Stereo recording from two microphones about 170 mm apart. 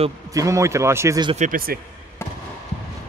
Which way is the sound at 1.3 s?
45° right (ahead or behind).